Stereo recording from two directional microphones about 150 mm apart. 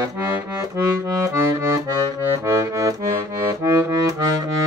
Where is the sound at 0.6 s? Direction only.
20° right (ahead or behind).